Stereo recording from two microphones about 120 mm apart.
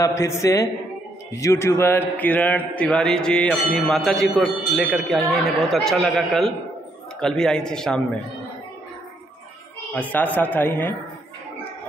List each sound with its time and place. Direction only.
0.0 s a man's voice: 25° left (ahead or behind); by 8.0 s 5° left (ahead or behind)
9.9 s a man's voice: 10° left (ahead or behind)